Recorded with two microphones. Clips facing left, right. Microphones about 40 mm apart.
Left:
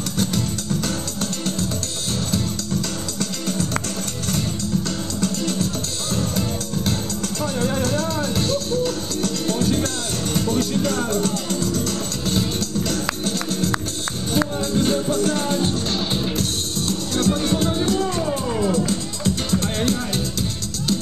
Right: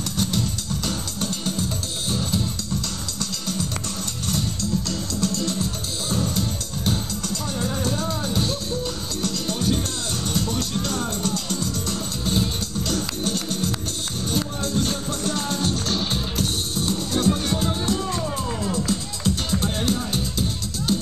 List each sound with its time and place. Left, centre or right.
8.0 s music: centre
9.6 s music: left
10.3 s music: centre
12.3 s music: centre
14.8 s music: left
18.2 s music: centre